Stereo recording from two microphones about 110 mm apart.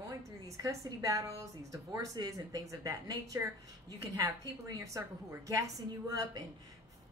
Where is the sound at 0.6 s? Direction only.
30° right (ahead or behind).